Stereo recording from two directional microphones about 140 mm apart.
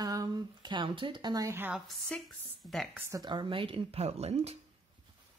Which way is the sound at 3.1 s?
30° right (ahead or behind).